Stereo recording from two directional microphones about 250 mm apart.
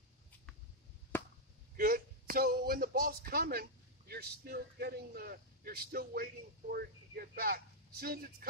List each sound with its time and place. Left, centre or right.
1.1 s chop: centre
1.8 s a man's voice: right